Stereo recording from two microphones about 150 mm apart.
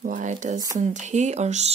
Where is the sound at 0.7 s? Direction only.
55° right (ahead or behind).